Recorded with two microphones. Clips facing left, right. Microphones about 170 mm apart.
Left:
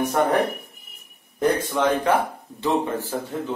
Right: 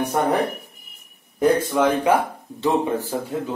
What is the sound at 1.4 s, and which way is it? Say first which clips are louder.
Speech: right 3 dB; 5° right (ahead or behind).